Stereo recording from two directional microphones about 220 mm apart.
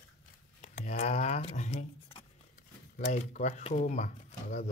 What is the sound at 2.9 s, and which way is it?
Speech, 35° left (ahead or behind).